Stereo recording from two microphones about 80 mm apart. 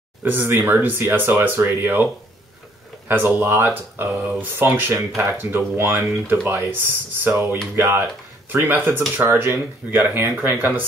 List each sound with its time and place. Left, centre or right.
0.2 s speech: right
3.1 s speech: right